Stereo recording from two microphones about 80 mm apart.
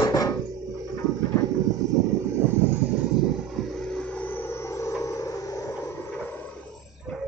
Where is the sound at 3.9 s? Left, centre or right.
Centre.